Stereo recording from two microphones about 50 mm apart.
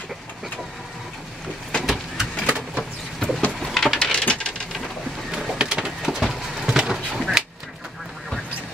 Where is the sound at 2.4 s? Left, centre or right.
Centre.